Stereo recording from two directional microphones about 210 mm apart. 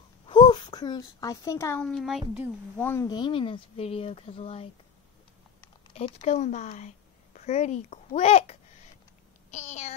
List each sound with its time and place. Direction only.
0.3 s speech: 20° left (ahead or behind); by 2.5 s 5° right (ahead or behind)
2.8 s speech: 10° left (ahead or behind); by 4.6 s 25° left (ahead or behind)
5.9 s a child's voice: 30° left (ahead or behind)
9.5 s babbling: 35° left (ahead or behind)